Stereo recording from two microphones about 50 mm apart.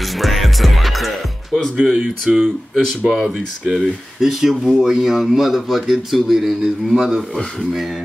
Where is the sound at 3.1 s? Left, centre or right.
Centre.